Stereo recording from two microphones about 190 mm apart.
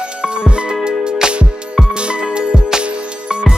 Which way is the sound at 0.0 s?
5° right (ahead or behind).